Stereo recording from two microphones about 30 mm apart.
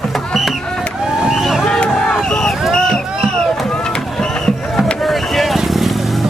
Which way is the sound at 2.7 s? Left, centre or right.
Left.